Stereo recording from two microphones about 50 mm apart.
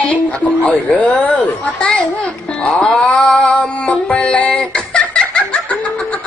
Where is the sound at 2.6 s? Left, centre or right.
Left.